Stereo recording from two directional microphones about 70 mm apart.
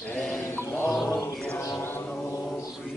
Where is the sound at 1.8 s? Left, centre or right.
Left.